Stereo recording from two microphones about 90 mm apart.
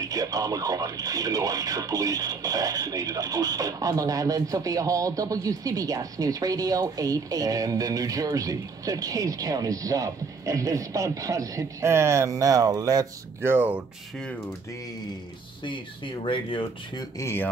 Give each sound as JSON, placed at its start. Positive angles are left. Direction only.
{"t": 0.0, "sound": "speech", "side_deg": -40}
{"t": 13.4, "sound": "speech", "side_deg": -25}
{"t": 16.3, "sound": "speech", "side_deg": 75}
{"t": 17.2, "sound": "speech", "side_deg": 30}